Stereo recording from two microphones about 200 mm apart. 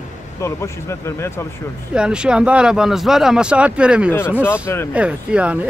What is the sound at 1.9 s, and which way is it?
Speech, 5° right (ahead or behind).